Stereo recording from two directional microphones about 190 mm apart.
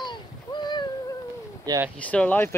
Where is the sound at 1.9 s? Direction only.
5° left (ahead or behind).